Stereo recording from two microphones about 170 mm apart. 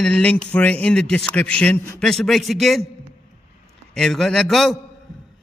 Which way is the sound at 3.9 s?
5° left (ahead or behind).